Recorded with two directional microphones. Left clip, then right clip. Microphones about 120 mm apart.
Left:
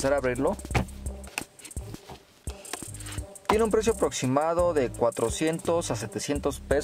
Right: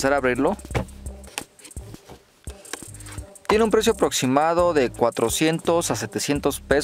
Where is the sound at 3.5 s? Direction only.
45° right (ahead or behind).